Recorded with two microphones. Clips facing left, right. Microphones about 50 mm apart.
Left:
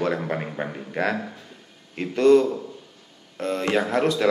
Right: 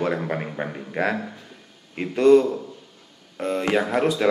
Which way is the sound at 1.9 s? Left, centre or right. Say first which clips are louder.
Right 1 dB; centre.